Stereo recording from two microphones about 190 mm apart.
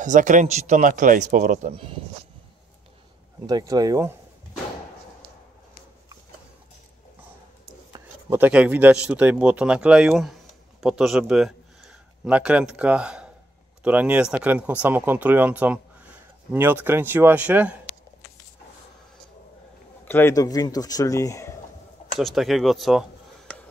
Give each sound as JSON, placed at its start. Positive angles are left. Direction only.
{"t": 0.0, "sound": "speech", "side_deg": -40}
{"t": 3.4, "sound": "speech", "side_deg": -20}
{"t": 7.9, "sound": "speech", "side_deg": -10}
{"t": 20.1, "sound": "speech", "side_deg": 10}
{"t": 22.2, "sound": "speech", "side_deg": 0}